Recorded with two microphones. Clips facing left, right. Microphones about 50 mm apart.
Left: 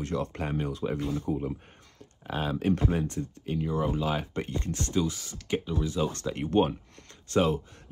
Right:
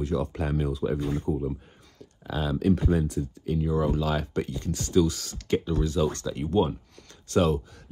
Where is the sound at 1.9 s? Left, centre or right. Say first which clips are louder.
Right 1 dB; left.